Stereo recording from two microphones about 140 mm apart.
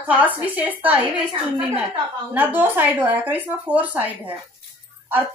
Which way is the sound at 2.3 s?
15° right (ahead or behind).